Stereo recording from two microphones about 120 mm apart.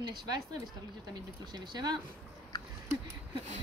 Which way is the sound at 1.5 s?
35° right (ahead or behind).